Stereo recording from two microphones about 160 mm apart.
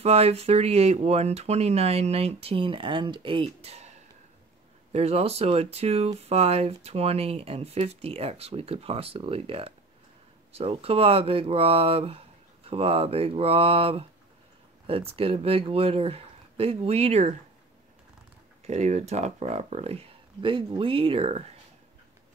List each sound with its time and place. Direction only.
0.0 s speech: 40° right (ahead or behind)
4.9 s speech: 40° right (ahead or behind)
18.7 s speech: 45° right (ahead or behind)